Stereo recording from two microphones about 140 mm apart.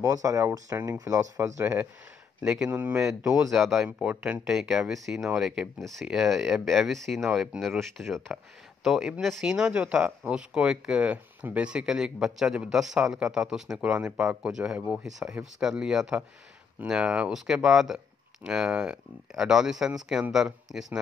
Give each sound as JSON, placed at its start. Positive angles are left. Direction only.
{"t": 0.0, "sound": "speech", "side_deg": -20}